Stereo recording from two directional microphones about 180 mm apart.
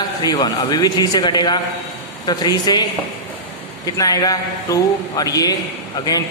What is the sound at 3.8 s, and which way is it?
A man's voice, 20° left (ahead or behind).